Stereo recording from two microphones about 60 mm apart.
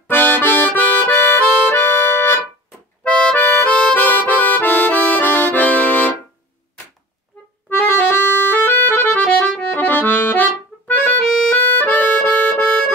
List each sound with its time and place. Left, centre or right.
0.1 s accordion: left
3.0 s accordion: centre
3.3 s accordion: left
7.7 s accordion: left